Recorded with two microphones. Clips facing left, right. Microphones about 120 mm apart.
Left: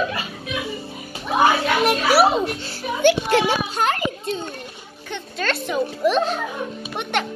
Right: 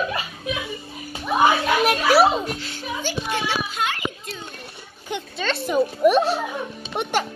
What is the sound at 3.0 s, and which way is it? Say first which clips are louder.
Speech: left 11 dB; 70° left (ahead or behind).